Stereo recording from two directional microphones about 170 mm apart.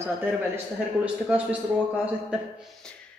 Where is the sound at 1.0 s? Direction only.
5° right (ahead or behind).